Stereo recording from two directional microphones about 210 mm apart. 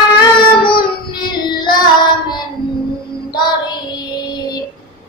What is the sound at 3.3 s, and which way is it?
Child singing, 20° left (ahead or behind).